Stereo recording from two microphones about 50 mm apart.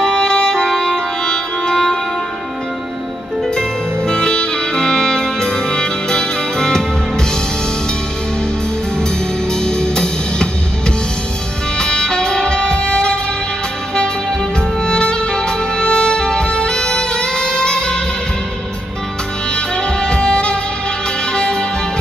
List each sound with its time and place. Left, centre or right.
0.0 s music: centre
4.1 s music: centre
9.5 s music: centre
11.8 s music: centre
14.8 s music: centre
19.5 s music: centre